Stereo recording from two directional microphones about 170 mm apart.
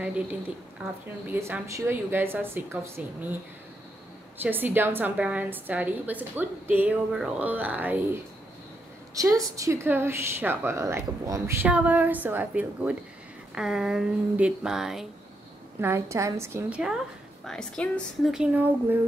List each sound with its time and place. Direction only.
1.2 s a woman's voice: 10° right (ahead or behind)
4.4 s a woman's voice: 10° right (ahead or behind)
15.8 s a woman's voice: 15° right (ahead or behind)
17.5 s a woman's voice: 5° left (ahead or behind)